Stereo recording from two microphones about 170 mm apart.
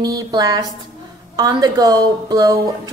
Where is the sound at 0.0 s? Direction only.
20° right (ahead or behind).